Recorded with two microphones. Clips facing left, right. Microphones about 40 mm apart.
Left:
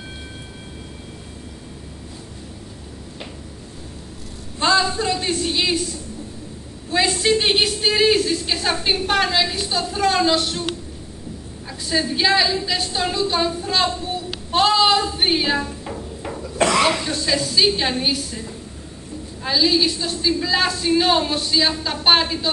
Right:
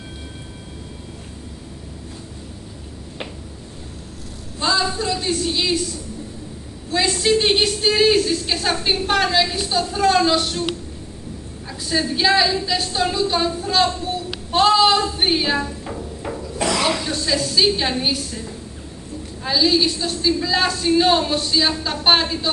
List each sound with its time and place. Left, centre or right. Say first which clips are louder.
4.6 s a sound: left 3 dB; left
5.1 s speech: even; left
7.2 s a woman's voice: right 3 dB; centre
11.8 s a woman's voice: even; centre
16.7 s a woman's voice: left 2 dB; centre
19.4 s a woman's voice: right 1 dB; centre